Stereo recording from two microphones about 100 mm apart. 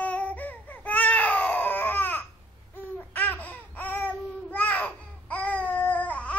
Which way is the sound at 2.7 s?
20° left (ahead or behind).